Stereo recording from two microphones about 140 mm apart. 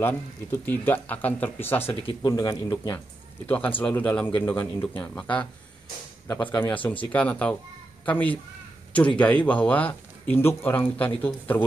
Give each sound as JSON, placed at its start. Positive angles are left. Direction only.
{"t": 0.0, "sound": "speech", "side_deg": 15}
{"t": 3.4, "sound": "speech", "side_deg": 10}